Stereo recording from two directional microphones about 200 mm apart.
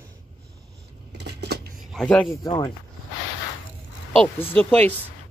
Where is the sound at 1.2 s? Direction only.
55° right (ahead or behind).